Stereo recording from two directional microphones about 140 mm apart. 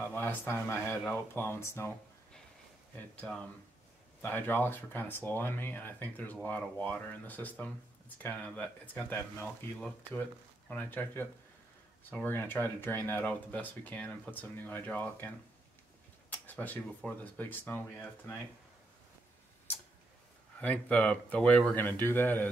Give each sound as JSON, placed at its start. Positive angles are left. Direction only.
{"t": 0.0, "sound": "speech", "side_deg": 15}
{"t": 3.2, "sound": "speech", "side_deg": 5}
{"t": 16.3, "sound": "speech", "side_deg": 10}
{"t": 20.6, "sound": "speech", "side_deg": 10}